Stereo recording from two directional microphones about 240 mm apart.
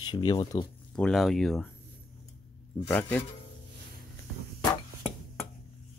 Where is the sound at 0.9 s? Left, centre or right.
Centre.